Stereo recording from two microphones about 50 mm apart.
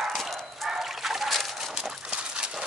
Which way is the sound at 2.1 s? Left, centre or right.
Centre.